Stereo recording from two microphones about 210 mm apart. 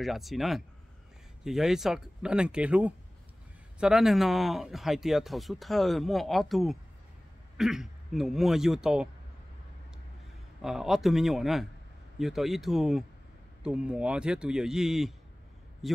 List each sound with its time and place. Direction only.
0.0 s speech: centre (ahead or behind)
10.6 s a man's voice: centre (ahead or behind)